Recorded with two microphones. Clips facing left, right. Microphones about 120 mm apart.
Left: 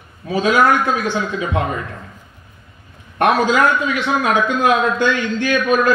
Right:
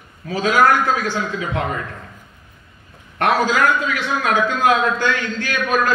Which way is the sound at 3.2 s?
25° left (ahead or behind).